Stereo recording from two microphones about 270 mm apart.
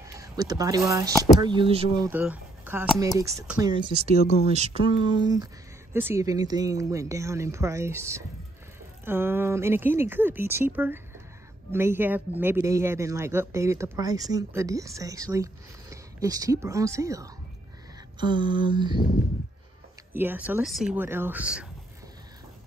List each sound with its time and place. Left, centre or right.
0.2 s speech: centre
2.0 s speech: centre
4.2 s speech: left
4.5 s speech: right
20.2 s speech: centre